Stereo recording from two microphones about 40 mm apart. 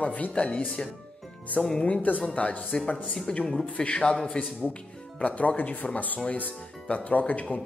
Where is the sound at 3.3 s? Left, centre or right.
Centre.